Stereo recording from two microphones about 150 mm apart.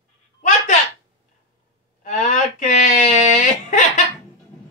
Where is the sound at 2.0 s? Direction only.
50° left (ahead or behind).